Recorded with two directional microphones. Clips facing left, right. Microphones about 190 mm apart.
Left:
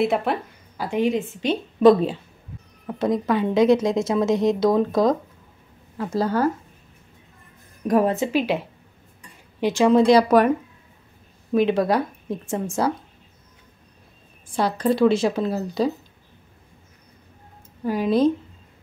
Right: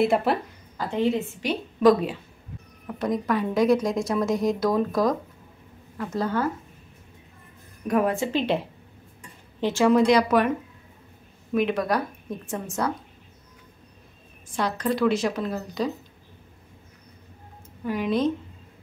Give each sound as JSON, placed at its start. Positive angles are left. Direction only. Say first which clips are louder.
{"t": 0.0, "sound": "speech", "louder": "even", "side_deg": 0}
{"t": 0.7, "sound": "a woman's voice", "louder": "left 2 dB", "side_deg": 15}
{"t": 5.9, "sound": "a woman's voice", "louder": "left 4 dB", "side_deg": 35}
{"t": 7.8, "sound": "a woman's voice", "louder": "left 4 dB", "side_deg": 35}
{"t": 8.3, "sound": "a woman's voice", "louder": "left 2 dB", "side_deg": 10}
{"t": 9.6, "sound": "a woman's voice", "louder": "left 3 dB", "side_deg": 15}
{"t": 10.0, "sound": "a woman's voice", "louder": "left 4 dB", "side_deg": 35}
{"t": 11.5, "sound": "a woman's voice", "louder": "left 4 dB", "side_deg": 30}
{"t": 14.5, "sound": "a woman's voice", "louder": "left 4 dB", "side_deg": 30}
{"t": 17.8, "sound": "a woman's voice", "louder": "left 5 dB", "side_deg": 35}